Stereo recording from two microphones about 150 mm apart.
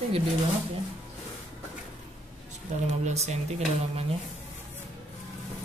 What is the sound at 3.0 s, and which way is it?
Speech, 50° right (ahead or behind).